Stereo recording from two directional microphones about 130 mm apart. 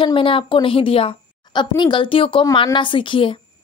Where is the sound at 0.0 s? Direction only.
45° left (ahead or behind).